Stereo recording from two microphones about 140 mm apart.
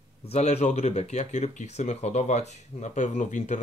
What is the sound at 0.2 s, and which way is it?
Speech, 50° left (ahead or behind).